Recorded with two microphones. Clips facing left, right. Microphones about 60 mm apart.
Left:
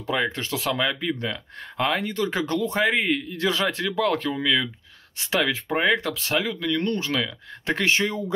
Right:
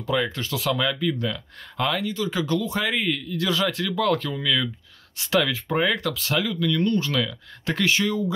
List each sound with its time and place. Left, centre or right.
0.0 s speech: left
2.0 s speech: left